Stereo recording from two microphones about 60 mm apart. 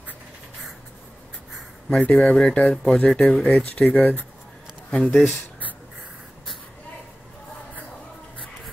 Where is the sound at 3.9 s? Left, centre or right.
Left.